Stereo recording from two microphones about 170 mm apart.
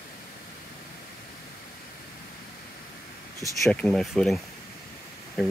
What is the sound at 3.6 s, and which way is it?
Speech, 5° left (ahead or behind).